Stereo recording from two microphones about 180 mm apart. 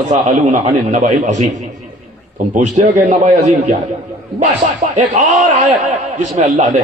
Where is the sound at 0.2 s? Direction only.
45° right (ahead or behind).